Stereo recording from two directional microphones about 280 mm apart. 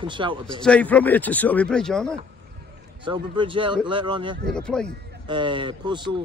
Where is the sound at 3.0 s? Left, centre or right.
Centre.